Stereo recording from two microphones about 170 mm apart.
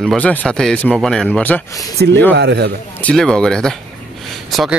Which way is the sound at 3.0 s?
5° left (ahead or behind).